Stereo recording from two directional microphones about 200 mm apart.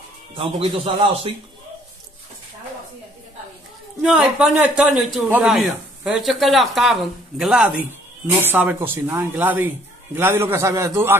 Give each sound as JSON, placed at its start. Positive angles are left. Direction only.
{"t": 0.3, "sound": "speech", "side_deg": -25}
{"t": 4.0, "sound": "speech", "side_deg": -5}